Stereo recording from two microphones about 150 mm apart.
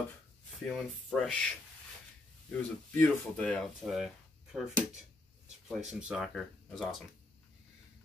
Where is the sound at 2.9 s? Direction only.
10° left (ahead or behind).